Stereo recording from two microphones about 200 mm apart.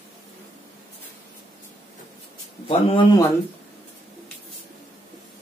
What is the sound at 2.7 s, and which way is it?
Speech, 25° left (ahead or behind).